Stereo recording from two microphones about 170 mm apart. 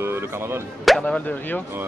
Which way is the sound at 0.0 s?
15° right (ahead or behind).